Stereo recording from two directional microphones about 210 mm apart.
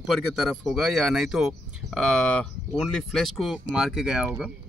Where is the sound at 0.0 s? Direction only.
Centre (ahead or behind).